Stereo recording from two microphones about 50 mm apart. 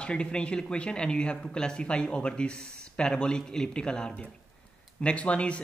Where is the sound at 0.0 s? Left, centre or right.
Centre.